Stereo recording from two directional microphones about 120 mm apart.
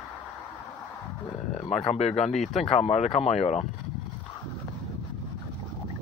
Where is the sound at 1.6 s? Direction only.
60° left (ahead or behind).